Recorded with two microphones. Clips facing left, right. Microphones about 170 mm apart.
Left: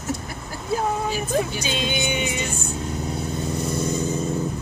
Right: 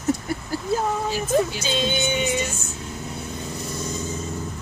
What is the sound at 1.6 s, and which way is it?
Music, 15° left (ahead or behind).